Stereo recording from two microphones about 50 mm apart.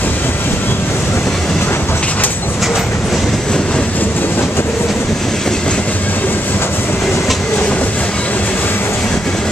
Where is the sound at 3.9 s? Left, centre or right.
Left.